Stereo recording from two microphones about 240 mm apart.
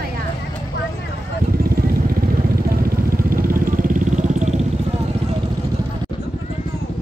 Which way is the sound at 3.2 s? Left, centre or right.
Right.